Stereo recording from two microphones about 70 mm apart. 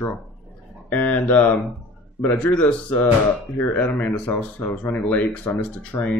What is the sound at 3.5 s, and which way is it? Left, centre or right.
Speech, left.